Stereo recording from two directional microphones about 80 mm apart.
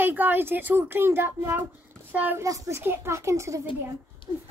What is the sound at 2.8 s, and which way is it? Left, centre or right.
Speech, right.